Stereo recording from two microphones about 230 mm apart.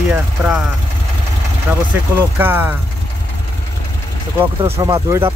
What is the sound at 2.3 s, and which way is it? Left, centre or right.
Speech, centre.